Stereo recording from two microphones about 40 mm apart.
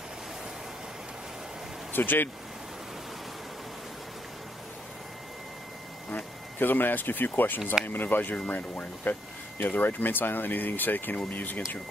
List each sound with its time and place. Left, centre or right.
1.9 s speech: left
6.1 s speech: left